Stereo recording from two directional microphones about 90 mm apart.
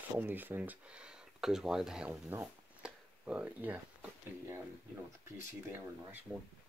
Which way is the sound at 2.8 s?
15° right (ahead or behind).